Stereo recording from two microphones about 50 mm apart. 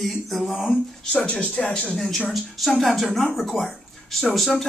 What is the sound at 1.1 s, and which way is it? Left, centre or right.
Speech, left.